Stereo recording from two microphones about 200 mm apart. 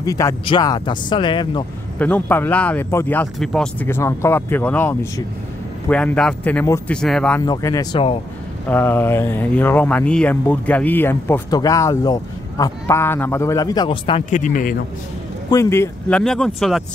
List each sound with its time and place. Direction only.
0.0 s speech: 15° left (ahead or behind)
2.0 s speech: 5° left (ahead or behind)
7.4 s speech: 20° left (ahead or behind)
8.6 s speech: 10° left (ahead or behind); by 14.8 s 40° left (ahead or behind)
15.5 s speech: 15° left (ahead or behind)